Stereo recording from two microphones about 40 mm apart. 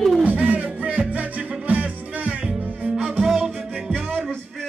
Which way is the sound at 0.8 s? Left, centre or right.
Right.